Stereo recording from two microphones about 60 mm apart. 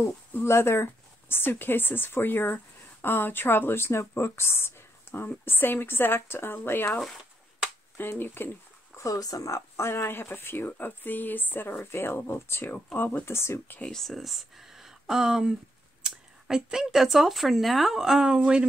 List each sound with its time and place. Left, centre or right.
0.3 s a woman's voice: left
8.0 s a woman's voice: left
8.9 s speech: left
9.8 s a woman's voice: left
13.8 s speech: centre